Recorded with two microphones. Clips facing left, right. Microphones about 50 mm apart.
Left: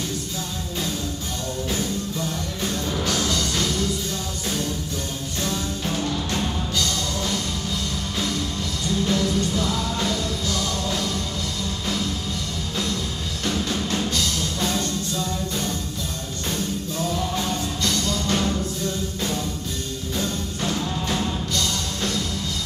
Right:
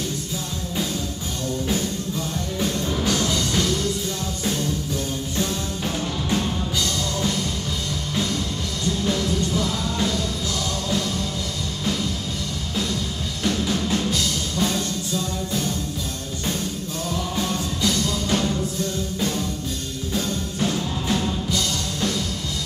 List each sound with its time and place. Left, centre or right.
3.0 s music: centre
5.4 s music: centre
9.0 s music: centre
13.4 s music: centre
17.8 s music: centre
20.6 s music: centre